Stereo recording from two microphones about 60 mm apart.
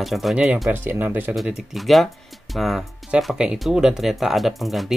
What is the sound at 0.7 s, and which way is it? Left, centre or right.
Speech, right.